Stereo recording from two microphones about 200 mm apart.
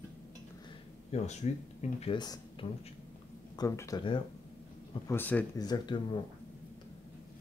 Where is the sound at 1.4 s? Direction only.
35° left (ahead or behind).